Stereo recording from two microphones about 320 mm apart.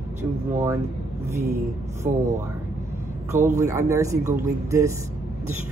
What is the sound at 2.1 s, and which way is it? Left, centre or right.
Speech, right.